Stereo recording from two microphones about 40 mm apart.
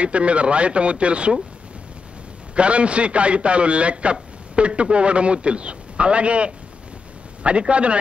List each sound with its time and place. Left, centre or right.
0.0 s a man's voice: right
2.5 s a man's voice: right